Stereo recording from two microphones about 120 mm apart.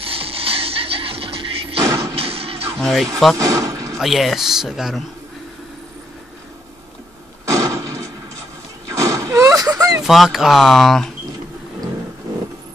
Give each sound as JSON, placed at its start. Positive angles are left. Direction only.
{"t": 0.0, "sound": "music", "side_deg": -50}
{"t": 1.9, "sound": "a sound", "side_deg": -25}
{"t": 2.1, "sound": "a sound", "side_deg": -55}
{"t": 2.8, "sound": "speech", "side_deg": 5}
{"t": 3.3, "sound": "speech", "side_deg": -25}
{"t": 4.0, "sound": "speech", "side_deg": 0}
{"t": 7.4, "sound": "a sound", "side_deg": -25}
{"t": 8.8, "sound": "vehicle", "side_deg": -30}
{"t": 10.0, "sound": "speech", "side_deg": 0}